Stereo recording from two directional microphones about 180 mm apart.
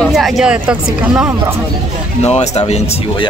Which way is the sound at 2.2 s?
35° left (ahead or behind).